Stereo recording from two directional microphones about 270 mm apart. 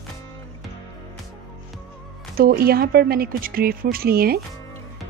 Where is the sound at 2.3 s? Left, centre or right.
Right.